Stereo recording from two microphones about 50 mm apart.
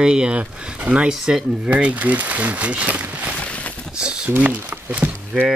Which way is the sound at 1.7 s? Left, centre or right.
Right.